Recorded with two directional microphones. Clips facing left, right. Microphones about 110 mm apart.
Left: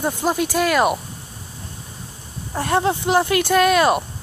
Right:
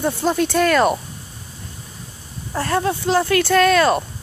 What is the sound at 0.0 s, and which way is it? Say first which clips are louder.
Speech: right 2 dB; 10° left (ahead or behind).